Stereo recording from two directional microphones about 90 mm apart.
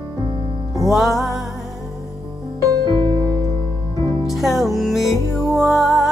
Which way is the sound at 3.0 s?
45° right (ahead or behind).